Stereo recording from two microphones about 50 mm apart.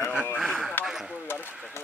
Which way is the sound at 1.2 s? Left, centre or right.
Left.